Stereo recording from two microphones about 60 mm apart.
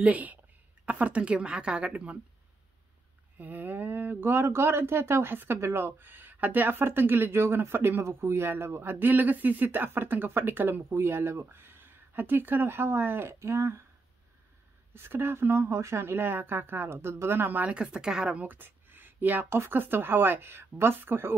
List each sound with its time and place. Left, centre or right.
0.0 s a woman's voice: right
3.3 s speech: right
15.0 s speech: right
17.6 s speech: centre; by 21.4 s right